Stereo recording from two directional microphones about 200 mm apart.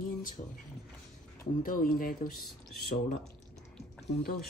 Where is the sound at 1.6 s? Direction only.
45° left (ahead or behind).